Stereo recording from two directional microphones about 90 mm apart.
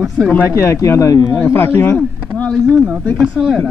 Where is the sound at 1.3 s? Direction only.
25° left (ahead or behind).